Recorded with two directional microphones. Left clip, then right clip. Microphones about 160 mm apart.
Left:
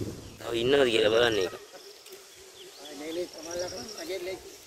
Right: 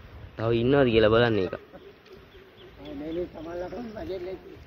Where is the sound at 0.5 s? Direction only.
15° left (ahead or behind).